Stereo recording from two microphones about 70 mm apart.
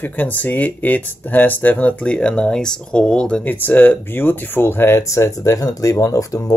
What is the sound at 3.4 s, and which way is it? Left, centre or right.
Speech, left.